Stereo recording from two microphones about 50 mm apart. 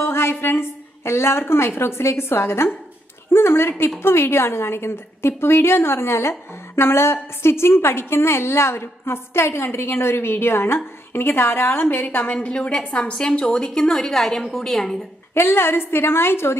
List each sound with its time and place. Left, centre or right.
0.0 s a sound: left
1.5 s a woman's voice: left
12.4 s a woman's voice: left; by 15.0 s centre
15.3 s a woman's voice: left